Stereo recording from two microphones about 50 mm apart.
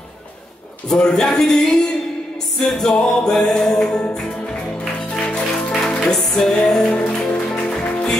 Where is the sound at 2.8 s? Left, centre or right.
Centre.